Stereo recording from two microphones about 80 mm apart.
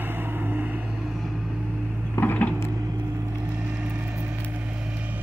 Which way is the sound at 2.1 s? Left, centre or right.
Left.